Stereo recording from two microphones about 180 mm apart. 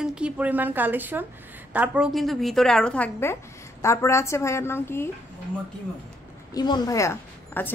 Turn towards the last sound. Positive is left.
turn(degrees=15)  # may be behind; listen again after turning